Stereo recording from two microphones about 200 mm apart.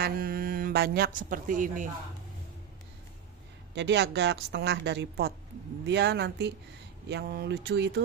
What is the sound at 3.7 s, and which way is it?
A woman's voice, 60° right (ahead or behind).